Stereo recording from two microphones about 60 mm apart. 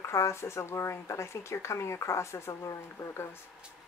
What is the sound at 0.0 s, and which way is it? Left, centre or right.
Speech, left.